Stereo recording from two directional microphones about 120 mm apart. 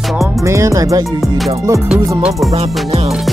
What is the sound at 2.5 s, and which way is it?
Music, 60° right (ahead or behind).